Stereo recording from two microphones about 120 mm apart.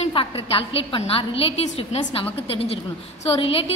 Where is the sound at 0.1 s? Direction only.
50° left (ahead or behind).